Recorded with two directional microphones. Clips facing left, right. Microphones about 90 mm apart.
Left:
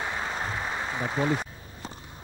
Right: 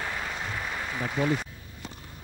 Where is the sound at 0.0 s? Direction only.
25° left (ahead or behind).